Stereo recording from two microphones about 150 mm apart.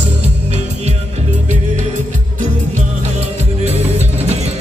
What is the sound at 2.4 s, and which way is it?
Music, 50° right (ahead or behind).